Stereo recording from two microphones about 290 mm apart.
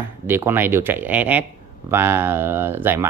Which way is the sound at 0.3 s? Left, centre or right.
Centre.